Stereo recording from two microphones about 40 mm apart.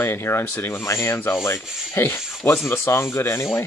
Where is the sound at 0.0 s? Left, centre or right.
Left.